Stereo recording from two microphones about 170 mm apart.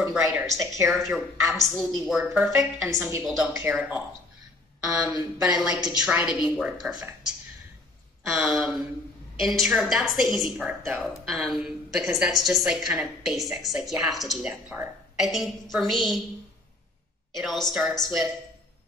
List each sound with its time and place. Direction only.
0.0 s a woman's voice: 5° right (ahead or behind)
0.8 s a woman's voice: centre (ahead or behind)
2.5 s a woman's voice: 20° right (ahead or behind)
3.3 s a woman's voice: centre (ahead or behind)
8.3 s a woman's voice: centre (ahead or behind)
17.4 s a woman's voice: centre (ahead or behind)